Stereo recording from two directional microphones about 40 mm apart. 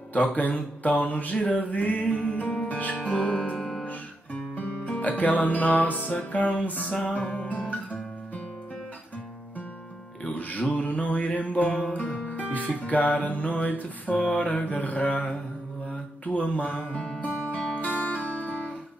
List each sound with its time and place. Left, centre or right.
0.1 s music: left
3.5 s music: centre
3.8 s music: left
6.9 s music: left
10.3 s music: left
15.9 s mantra: left
16.7 s music: left
17.2 s music: left